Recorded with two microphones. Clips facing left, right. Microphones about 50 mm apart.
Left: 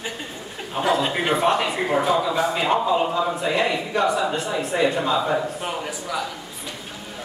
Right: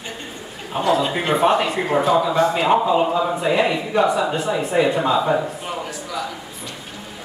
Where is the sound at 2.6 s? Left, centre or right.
Centre.